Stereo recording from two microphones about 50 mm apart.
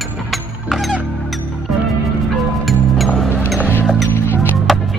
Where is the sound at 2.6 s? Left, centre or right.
Centre.